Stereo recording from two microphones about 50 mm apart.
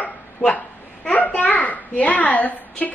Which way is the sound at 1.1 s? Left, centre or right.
Left.